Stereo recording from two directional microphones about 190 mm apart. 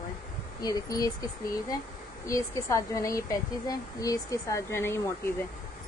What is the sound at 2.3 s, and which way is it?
A woman's voice, 15° left (ahead or behind).